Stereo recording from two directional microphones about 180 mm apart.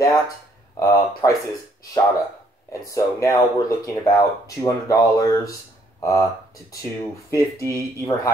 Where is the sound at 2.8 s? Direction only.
15° left (ahead or behind).